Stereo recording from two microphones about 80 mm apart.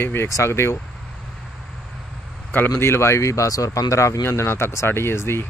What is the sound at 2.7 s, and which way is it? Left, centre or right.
Speech, left.